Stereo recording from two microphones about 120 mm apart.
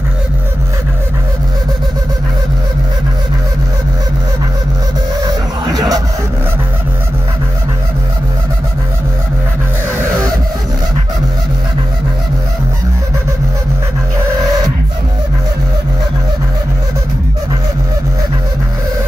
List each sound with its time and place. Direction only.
5.2 s music: 35° right (ahead or behind)